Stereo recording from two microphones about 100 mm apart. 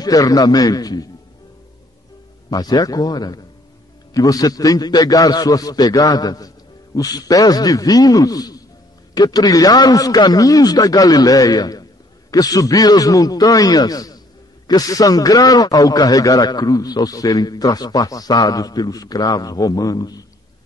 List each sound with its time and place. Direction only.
0.0 s a man's voice: 40° left (ahead or behind)
2.5 s a man's voice: 40° left (ahead or behind)